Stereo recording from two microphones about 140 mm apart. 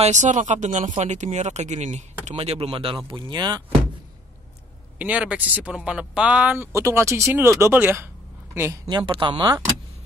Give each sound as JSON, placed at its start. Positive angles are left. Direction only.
{"t": 0.0, "sound": "speech", "side_deg": -60}
{"t": 4.9, "sound": "speech", "side_deg": -10}
{"t": 8.8, "sound": "speech", "side_deg": -35}